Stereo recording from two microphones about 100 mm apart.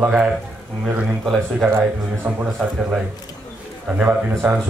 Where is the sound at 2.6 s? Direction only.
10° right (ahead or behind).